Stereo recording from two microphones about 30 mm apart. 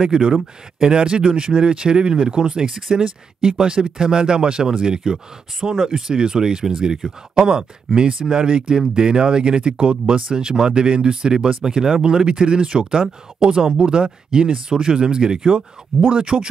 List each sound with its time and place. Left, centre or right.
0.0 s speech: right
5.1 s speech: centre
7.4 s speech: right
16.3 s speech: right